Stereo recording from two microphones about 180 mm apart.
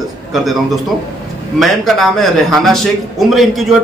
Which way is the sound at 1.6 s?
Centre (ahead or behind).